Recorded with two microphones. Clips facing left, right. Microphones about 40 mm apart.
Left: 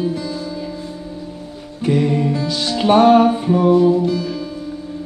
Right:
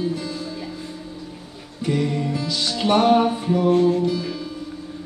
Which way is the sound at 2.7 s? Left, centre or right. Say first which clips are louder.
Left 6 dB; left.